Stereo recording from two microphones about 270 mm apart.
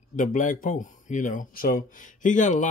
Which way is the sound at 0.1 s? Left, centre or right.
Left.